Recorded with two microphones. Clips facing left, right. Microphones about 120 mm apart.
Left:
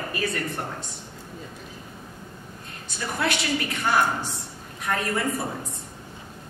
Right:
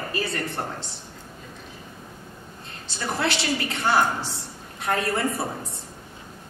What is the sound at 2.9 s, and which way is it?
A woman's voice, 30° right (ahead or behind).